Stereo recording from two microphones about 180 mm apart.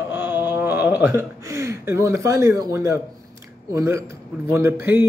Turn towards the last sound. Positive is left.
turn(degrees=-15)  # may be behind; listen again after turning